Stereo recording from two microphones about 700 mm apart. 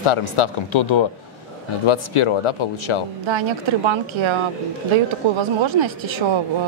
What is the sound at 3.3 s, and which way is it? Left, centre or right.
Speech, right.